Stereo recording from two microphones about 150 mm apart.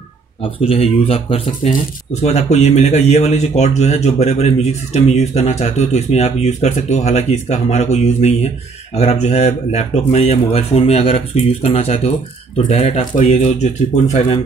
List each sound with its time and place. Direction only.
0.4 s speech: 40° left (ahead or behind)